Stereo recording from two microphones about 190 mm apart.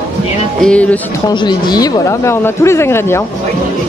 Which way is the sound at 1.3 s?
25° left (ahead or behind).